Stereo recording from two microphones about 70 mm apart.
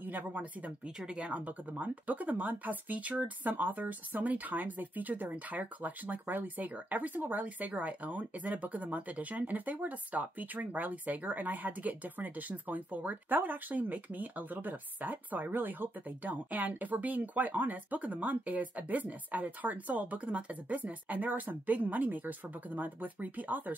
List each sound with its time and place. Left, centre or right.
0.0 s speech: right